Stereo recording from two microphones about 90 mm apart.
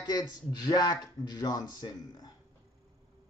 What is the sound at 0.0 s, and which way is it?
Speech, 50° left (ahead or behind).